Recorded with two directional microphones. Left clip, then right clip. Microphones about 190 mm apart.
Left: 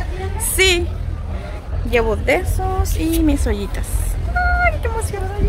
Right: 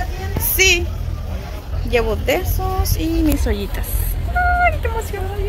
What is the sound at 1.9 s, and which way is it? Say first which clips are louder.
Speech: left 1 dB; 15° left (ahead or behind).